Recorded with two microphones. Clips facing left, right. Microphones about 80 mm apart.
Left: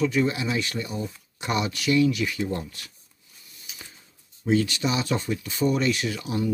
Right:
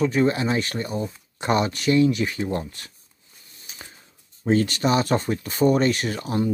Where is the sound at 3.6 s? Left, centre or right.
Right.